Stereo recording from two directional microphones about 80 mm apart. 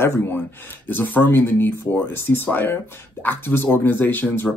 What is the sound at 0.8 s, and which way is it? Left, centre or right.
Speech, left.